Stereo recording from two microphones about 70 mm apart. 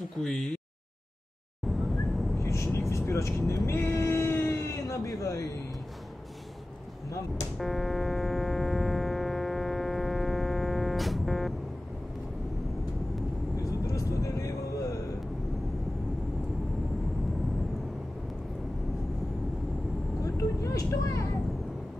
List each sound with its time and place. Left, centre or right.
0.2 s speech: centre
2.3 s vehicle: left
3.6 s a sound: left
4.6 s a sound: left
7.5 s music: centre
13.6 s vehicle: left
20.2 s vehicle: left